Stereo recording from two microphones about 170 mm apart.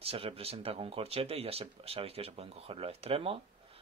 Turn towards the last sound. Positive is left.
turn(degrees=-35)  # may be behind; listen again after turning